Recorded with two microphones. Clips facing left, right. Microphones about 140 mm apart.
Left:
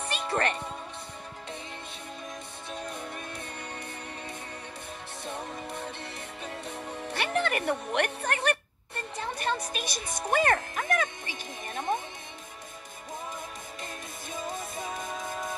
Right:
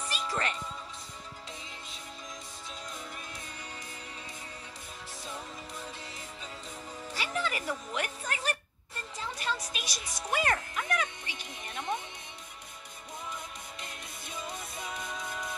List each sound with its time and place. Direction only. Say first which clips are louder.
0.0 s music: left 5 dB; 60° left (ahead or behind)
2.7 s music: left 7 dB; 60° left (ahead or behind)
5.2 s music: left 6 dB; 60° left (ahead or behind)
10.3 s speech: left 5 dB; 50° left (ahead or behind)
11.7 s music: left 4 dB; 45° left (ahead or behind)
14.3 s music: left 5 dB; 45° left (ahead or behind)